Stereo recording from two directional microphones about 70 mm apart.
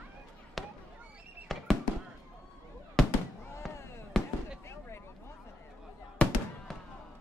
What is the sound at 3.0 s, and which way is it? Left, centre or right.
Fireworks, centre.